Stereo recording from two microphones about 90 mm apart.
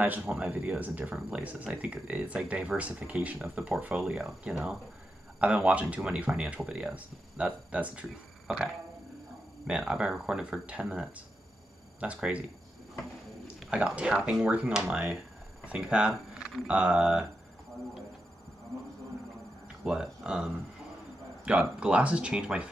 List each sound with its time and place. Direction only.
0.0 s speech: 20° right (ahead or behind)
3.9 s speech: 5° right (ahead or behind)
5.7 s speech: 15° right (ahead or behind)
9.7 s speech: 5° right (ahead or behind)
13.7 s speech: 10° right (ahead or behind)
15.6 s speech: 15° right (ahead or behind)
19.8 s speech: 10° right (ahead or behind)